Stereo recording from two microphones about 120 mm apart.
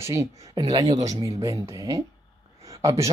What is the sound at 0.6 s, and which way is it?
Speech, 35° right (ahead or behind).